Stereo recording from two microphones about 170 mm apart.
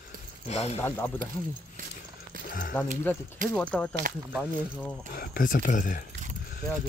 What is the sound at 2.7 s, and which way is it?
Speech, 10° left (ahead or behind).